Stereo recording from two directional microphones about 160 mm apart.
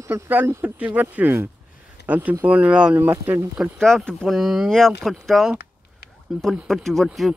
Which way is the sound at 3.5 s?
Centre (ahead or behind).